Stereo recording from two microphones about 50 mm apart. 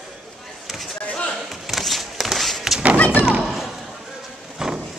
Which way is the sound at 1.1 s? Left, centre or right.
Centre.